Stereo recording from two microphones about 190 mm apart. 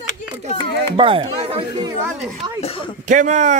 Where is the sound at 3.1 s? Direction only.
40° right (ahead or behind).